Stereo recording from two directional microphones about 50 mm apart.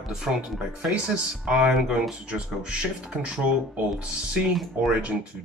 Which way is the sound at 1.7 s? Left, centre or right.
Centre.